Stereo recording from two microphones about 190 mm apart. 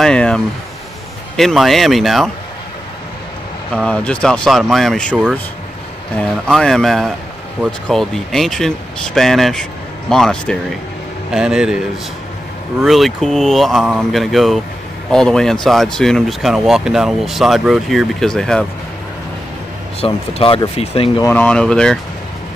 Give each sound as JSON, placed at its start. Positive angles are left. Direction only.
{"t": 0.0, "sound": "speech", "side_deg": 5}
{"t": 3.7, "sound": "speech", "side_deg": 5}
{"t": 12.8, "sound": "speech", "side_deg": 0}
{"t": 20.0, "sound": "speech", "side_deg": 30}
{"t": 21.2, "sound": "speech", "side_deg": 10}